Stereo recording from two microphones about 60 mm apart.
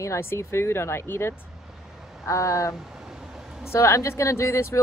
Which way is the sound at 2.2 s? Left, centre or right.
Left.